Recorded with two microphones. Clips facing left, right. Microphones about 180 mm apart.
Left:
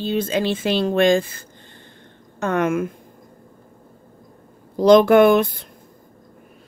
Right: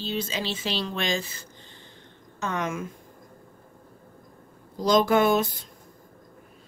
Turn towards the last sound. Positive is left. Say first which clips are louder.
# left 8 dB
turn(degrees=60)  # may be behind; listen again after turning